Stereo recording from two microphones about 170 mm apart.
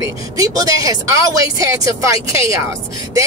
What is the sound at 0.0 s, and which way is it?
Speech, 20° right (ahead or behind).